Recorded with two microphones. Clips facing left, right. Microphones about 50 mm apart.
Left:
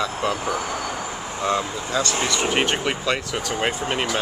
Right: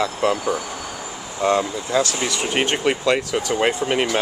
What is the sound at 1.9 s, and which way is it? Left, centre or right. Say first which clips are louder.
Speech: right 2 dB; centre.